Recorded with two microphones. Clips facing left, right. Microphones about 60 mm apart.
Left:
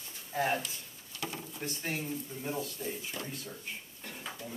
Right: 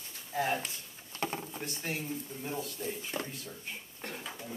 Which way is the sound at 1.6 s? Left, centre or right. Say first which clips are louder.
Left 5 dB; centre.